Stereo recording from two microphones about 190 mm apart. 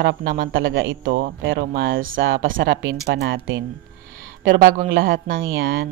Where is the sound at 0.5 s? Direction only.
90° right.